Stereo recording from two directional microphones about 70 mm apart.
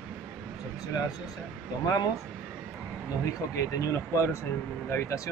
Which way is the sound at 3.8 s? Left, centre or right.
Left.